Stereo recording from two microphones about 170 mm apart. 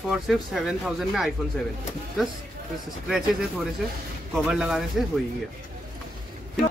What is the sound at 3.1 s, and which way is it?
Speech, centre (ahead or behind).